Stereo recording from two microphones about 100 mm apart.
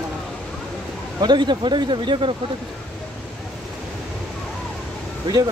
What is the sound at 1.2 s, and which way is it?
Speech, 50° right (ahead or behind).